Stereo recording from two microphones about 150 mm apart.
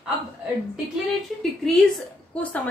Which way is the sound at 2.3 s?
10° left (ahead or behind).